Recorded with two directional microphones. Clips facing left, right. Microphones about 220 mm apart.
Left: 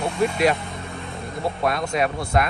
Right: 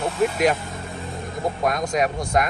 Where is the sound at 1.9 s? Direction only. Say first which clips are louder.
Right 1 dB; 15° right (ahead or behind).